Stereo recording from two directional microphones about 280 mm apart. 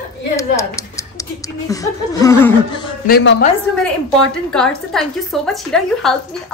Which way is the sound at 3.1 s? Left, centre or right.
Left.